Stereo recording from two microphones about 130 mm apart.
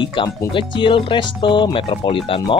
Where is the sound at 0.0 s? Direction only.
40° left (ahead or behind).